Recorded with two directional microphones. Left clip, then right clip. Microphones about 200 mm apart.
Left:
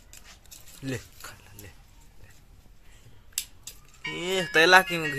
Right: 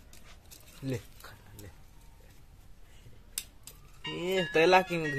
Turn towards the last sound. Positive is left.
turn(degrees=0)  # may be behind; listen again after turning